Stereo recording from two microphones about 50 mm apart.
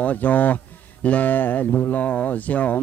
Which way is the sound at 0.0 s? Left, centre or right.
Left.